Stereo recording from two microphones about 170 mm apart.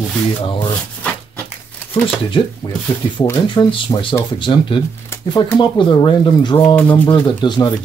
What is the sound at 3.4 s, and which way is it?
Speech, 30° left (ahead or behind).